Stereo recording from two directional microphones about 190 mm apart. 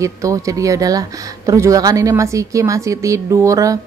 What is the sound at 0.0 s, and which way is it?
Speech, 15° right (ahead or behind).